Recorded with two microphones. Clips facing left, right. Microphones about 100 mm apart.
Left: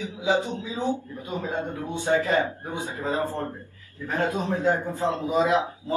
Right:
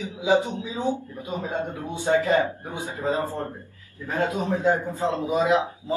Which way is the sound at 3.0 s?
20° right (ahead or behind).